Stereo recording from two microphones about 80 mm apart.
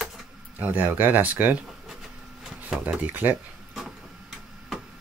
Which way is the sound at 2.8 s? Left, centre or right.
Right.